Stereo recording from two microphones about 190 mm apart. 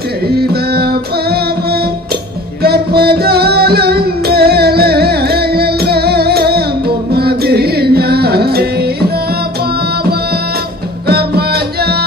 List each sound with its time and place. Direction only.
0.3 s music: 55° right (ahead or behind)
11.1 s music: 55° right (ahead or behind)